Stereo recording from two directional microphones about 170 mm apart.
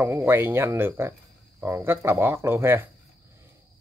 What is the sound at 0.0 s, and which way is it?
Speech, 15° right (ahead or behind).